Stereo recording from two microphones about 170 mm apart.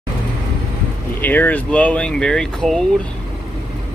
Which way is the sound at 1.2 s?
10° left (ahead or behind).